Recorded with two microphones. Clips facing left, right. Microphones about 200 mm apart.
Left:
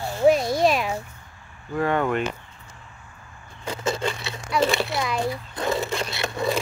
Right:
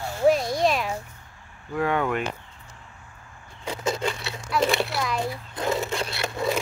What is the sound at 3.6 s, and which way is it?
Speech, centre (ahead or behind).